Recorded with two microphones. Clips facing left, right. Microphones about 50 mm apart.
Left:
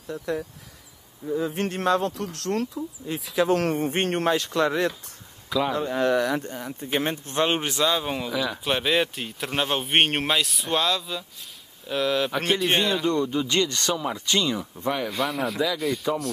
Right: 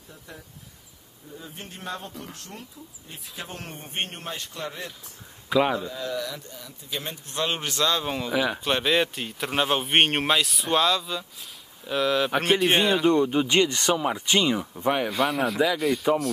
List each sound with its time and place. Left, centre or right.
1.3 s speech: left
5.5 s speech: right
5.8 s speech: left; by 8.3 s centre
8.3 s speech: right
8.6 s speech: centre
13.0 s speech: right
15.0 s speech: centre